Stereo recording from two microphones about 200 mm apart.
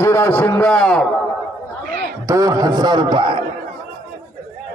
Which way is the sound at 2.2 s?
15° right (ahead or behind).